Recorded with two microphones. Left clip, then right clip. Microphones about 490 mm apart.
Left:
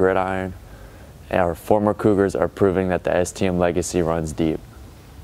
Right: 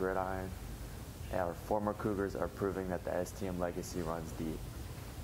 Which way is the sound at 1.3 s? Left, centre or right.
Left.